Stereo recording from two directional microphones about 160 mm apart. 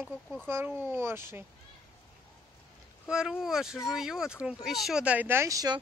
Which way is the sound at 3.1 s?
5° right (ahead or behind).